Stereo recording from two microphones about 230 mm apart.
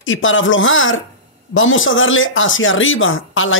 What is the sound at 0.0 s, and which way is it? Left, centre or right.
Speech, left.